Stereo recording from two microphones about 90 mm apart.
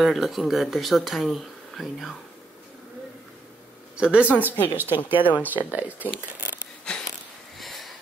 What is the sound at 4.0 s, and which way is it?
Speech, 10° right (ahead or behind).